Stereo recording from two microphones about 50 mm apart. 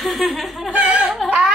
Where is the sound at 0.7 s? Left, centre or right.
Right.